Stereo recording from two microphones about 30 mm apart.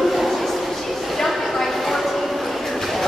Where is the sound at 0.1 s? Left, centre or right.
Centre.